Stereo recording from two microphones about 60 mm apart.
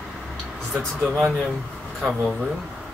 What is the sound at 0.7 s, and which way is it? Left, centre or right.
Speech, centre.